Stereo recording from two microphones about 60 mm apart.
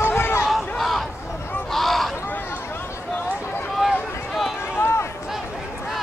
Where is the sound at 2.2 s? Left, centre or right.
Left.